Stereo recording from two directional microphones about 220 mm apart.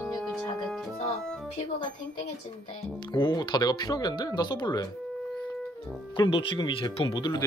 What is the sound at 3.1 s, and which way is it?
Speech, 20° left (ahead or behind).